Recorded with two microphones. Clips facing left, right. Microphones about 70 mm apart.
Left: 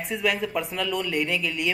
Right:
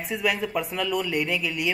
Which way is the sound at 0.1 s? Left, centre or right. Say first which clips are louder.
Even; centre.